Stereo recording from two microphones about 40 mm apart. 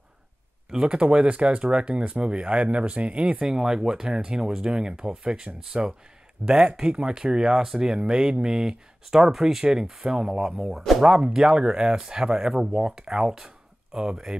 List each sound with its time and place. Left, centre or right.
0.7 s speech: right
3.3 s speech: centre
11.4 s speech: right